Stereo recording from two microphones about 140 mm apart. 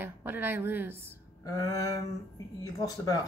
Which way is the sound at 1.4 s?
25° left (ahead or behind).